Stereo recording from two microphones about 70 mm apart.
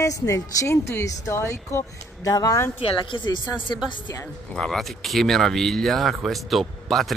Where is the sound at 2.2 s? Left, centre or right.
Left.